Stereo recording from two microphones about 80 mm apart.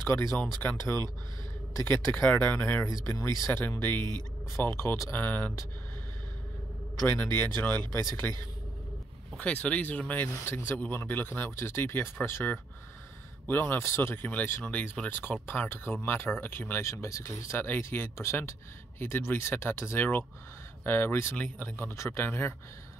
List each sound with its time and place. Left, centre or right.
0.4 s speech: centre
2.4 s speech: left
2.9 s speech: left
3.8 s speech: left
5.1 s speech: left
7.1 s speech: left
7.9 s speech: left
9.4 s speech: centre
10.3 s speech: left
16.8 s speech: left